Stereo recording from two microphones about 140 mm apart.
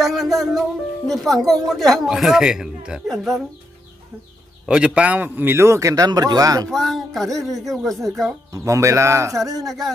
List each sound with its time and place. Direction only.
0.0 s music: centre (ahead or behind)
1.0 s speech: centre (ahead or behind)
4.6 s a man's voice: 5° right (ahead or behind); by 6.7 s 25° right (ahead or behind)
6.7 s speech: centre (ahead or behind)
8.5 s a man's voice: 20° right (ahead or behind)
9.6 s speech: centre (ahead or behind)